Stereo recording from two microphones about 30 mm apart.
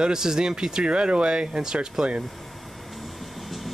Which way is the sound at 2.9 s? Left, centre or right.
Centre.